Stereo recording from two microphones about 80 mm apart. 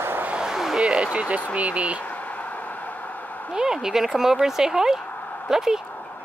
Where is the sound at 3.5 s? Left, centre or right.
Centre.